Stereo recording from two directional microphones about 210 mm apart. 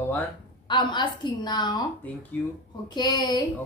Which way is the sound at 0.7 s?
20° left (ahead or behind).